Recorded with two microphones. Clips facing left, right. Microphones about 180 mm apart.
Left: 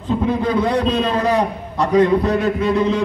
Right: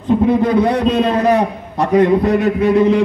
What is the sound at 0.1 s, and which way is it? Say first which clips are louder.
A man's voice: right 5 dB; 20° right (ahead or behind).